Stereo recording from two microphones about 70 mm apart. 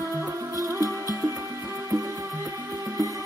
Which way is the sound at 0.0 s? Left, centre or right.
Right.